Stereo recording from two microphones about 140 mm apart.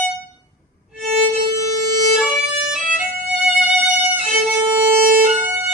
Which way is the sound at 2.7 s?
5° right (ahead or behind).